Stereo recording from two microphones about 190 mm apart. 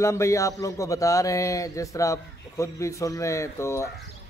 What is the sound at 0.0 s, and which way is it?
Speech, 15° left (ahead or behind).